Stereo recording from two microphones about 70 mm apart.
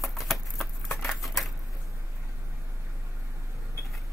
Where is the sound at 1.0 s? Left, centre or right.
Centre.